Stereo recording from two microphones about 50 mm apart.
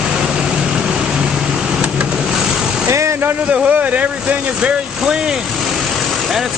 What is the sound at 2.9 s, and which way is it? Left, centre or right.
Vehicle, right.